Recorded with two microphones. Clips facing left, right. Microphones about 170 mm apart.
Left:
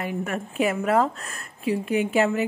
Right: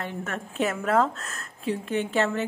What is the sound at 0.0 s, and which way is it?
Speech, 10° left (ahead or behind).